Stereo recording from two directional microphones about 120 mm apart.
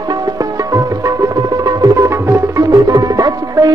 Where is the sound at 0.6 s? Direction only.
30° right (ahead or behind).